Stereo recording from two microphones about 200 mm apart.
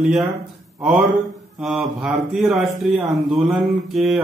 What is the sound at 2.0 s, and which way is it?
A man's voice, centre (ahead or behind).